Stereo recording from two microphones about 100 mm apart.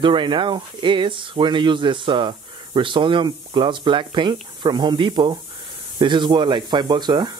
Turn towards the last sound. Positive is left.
turn(degrees=-45)  # may be behind; listen again after turning